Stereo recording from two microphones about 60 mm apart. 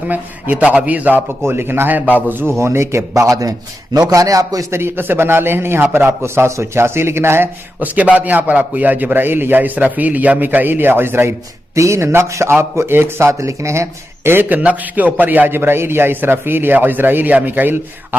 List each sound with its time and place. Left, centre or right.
0.1 s a man's voice: right
1.4 s a man's voice: right
2.5 s a man's voice: right
4.6 s a man's voice: right
7.8 s a man's voice: right
11.7 s speech: right
13.3 s speech: right
14.4 s a man's voice: right